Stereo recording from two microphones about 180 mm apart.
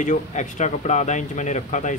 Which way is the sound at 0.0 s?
45° left (ahead or behind).